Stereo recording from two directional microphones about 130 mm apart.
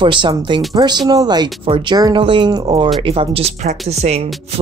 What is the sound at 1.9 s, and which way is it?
Speech, 30° right (ahead or behind).